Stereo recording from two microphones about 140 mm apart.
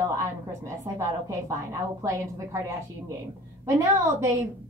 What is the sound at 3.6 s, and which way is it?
Speech, 20° right (ahead or behind).